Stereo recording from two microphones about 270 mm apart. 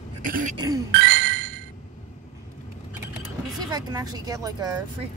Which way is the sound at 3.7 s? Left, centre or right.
Centre.